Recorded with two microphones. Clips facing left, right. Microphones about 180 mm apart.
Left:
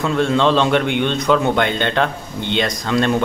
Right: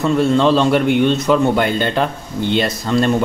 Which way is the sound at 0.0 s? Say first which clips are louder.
Right 3 dB; centre (ahead or behind).